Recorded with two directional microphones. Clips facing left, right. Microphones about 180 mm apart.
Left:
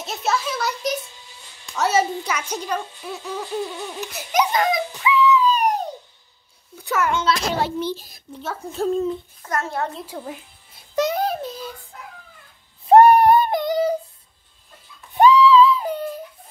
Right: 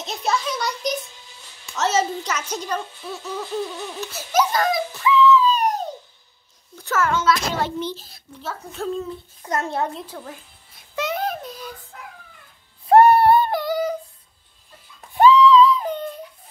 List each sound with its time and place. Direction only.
0.0 s a child's voice: 5° left (ahead or behind); by 7.6 s 25° left (ahead or behind)
7.8 s a child's voice: 15° left (ahead or behind)
9.4 s a child's voice: 20° right (ahead or behind)
10.0 s a child's voice: 15° left (ahead or behind)
11.0 s child singing: 35° left (ahead or behind)
12.8 s a sound: 15° left (ahead or behind)
15.1 s a sound: 10° left (ahead or behind)